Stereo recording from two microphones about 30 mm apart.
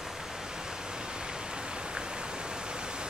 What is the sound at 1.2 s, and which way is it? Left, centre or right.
Pink noise, right.